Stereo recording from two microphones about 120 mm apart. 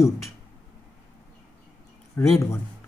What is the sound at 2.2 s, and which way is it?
Speech, 25° left (ahead or behind).